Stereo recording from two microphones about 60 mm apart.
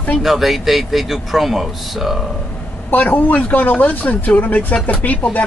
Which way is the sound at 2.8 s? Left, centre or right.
Left.